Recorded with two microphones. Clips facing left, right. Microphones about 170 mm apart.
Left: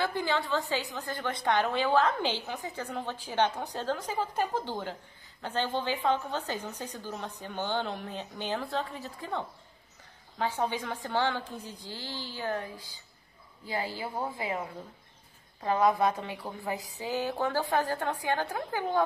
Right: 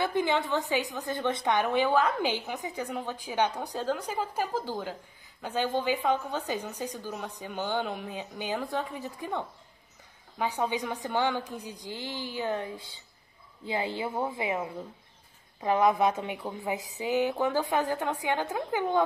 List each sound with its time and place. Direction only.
0.0 s a woman's voice: 20° right (ahead or behind)
10.4 s a woman's voice: 15° right (ahead or behind)